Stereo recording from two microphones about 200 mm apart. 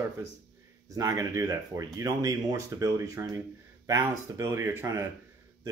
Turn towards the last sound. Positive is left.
turn(degrees=-15)  # may be behind; listen again after turning